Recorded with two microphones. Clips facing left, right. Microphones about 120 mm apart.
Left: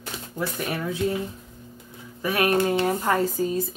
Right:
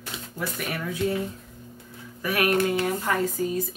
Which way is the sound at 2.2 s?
25° left (ahead or behind).